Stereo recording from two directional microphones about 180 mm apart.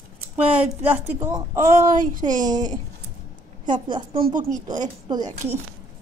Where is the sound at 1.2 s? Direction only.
20° right (ahead or behind).